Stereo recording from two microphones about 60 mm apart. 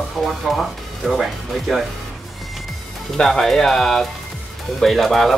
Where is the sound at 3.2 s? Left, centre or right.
Centre.